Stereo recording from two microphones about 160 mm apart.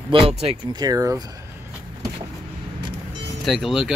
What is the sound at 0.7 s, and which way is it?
Speech, 25° right (ahead or behind).